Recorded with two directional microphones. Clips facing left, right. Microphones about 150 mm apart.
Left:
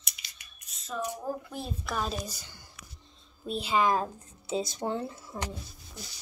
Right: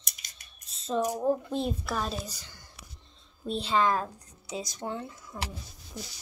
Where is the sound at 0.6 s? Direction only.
30° right (ahead or behind).